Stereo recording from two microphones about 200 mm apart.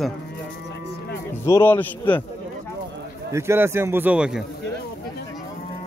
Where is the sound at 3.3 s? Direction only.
15° right (ahead or behind).